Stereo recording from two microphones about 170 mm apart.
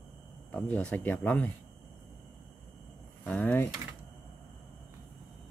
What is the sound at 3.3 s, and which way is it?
Speech, 10° left (ahead or behind).